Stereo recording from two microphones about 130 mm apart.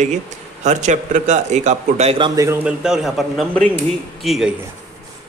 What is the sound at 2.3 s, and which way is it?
Speech, 25° right (ahead or behind).